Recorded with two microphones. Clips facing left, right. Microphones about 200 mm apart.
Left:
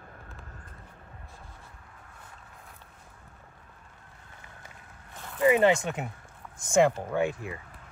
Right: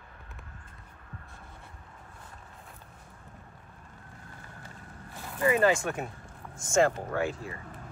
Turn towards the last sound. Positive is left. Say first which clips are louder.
# left 3 dB
turn(degrees=15)  # may be behind; listen again after turning